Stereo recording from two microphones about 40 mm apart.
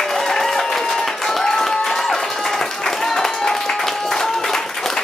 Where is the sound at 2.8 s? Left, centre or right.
Centre.